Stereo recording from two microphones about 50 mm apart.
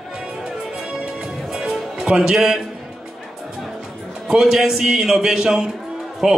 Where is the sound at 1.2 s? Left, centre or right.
Centre.